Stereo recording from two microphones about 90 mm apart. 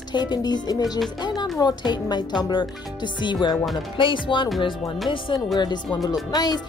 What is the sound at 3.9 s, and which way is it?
Speech, 70° left (ahead or behind).